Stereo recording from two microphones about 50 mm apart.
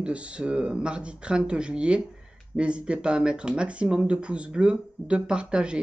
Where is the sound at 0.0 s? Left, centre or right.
Right.